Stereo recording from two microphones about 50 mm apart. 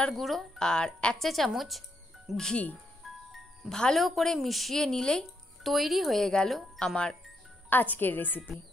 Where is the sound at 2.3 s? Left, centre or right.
Centre.